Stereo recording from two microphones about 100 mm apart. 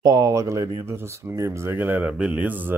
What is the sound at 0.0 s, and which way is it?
Speech, 35° right (ahead or behind).